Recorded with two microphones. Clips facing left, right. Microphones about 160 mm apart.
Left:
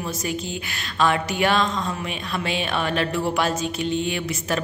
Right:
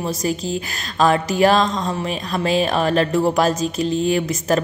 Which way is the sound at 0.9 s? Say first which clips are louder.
Right 5 dB; 35° right (ahead or behind).